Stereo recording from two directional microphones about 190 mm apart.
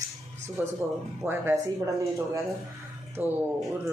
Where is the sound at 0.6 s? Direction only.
10° right (ahead or behind).